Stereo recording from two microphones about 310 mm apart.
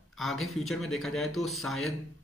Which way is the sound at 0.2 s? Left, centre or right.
Centre.